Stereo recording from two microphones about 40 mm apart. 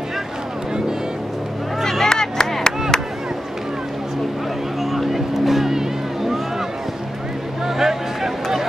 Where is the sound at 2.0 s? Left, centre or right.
Centre.